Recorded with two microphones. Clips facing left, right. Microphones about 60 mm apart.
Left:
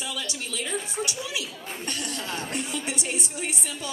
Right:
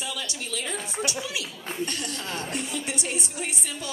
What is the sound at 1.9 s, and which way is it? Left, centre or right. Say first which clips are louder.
A woman's voice: left 1 dB; left.